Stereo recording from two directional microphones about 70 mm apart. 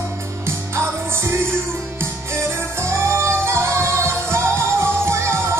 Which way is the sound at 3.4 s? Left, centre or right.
Right.